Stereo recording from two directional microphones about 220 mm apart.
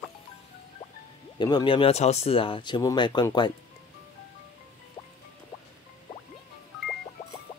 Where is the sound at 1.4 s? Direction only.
20° left (ahead or behind).